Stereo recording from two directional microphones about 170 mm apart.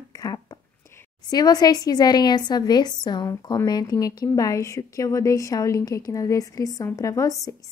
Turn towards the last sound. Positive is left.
turn(degrees=20)  # may be behind; listen again after turning